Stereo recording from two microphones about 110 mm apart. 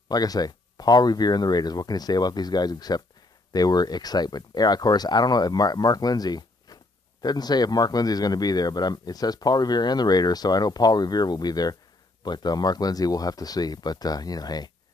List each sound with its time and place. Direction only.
0.1 s speech: 35° left (ahead or behind)